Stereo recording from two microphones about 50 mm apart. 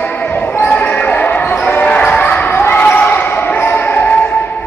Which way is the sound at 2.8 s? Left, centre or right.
Left.